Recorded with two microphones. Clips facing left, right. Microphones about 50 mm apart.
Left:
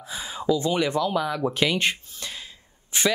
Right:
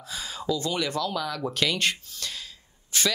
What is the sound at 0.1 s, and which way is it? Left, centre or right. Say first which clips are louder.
Speech: left 5 dB; left.